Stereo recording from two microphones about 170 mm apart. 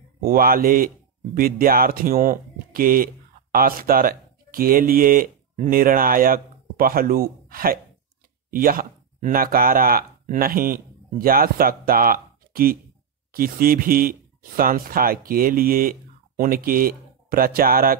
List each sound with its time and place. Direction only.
0.2 s speech: 60° right (ahead or behind)